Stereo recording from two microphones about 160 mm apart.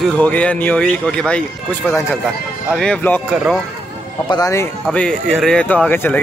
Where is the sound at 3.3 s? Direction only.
5° right (ahead or behind).